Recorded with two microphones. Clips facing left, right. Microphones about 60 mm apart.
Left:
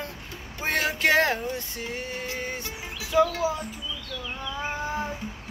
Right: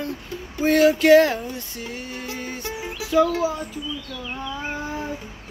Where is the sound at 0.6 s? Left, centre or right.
Left.